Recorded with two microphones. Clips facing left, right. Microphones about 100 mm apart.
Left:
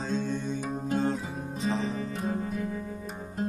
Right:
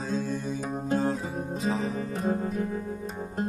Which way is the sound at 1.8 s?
40° right (ahead or behind).